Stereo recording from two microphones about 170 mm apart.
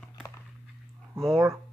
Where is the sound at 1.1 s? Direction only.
15° right (ahead or behind).